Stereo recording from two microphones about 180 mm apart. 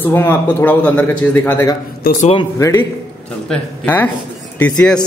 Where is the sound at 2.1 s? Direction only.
55° left (ahead or behind).